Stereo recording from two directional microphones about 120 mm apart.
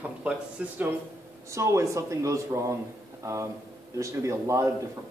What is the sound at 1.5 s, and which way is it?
Speech, 25° right (ahead or behind).